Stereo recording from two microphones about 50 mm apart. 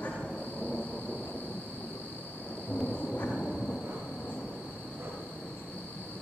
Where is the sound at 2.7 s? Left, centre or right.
Left.